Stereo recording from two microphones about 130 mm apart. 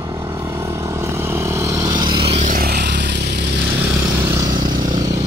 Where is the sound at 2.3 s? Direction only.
80° right.